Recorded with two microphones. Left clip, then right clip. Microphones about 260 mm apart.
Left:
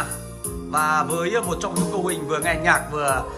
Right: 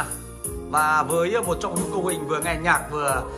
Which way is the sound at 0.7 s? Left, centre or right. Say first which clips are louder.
Right 1 dB; centre.